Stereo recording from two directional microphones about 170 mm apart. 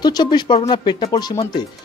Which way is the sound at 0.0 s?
25° left (ahead or behind).